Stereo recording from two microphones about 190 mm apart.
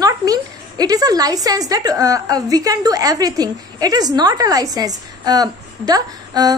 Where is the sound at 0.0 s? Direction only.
20° right (ahead or behind).